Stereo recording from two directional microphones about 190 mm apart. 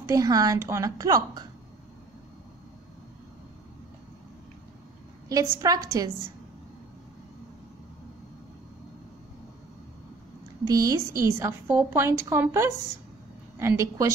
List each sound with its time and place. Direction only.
0.1 s a woman's voice: 20° right (ahead or behind)
5.3 s a woman's voice: 20° right (ahead or behind)
10.6 s a woman's voice: 20° right (ahead or behind)